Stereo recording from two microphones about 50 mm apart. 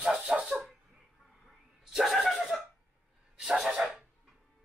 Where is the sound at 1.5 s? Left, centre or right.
Centre.